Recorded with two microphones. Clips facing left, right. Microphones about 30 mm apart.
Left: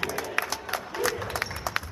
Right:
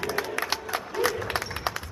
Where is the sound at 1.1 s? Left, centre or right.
Left.